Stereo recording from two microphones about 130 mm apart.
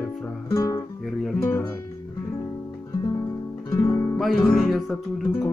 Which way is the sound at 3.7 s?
25° left (ahead or behind).